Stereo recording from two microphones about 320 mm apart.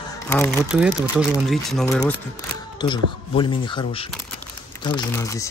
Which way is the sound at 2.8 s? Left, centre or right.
Centre.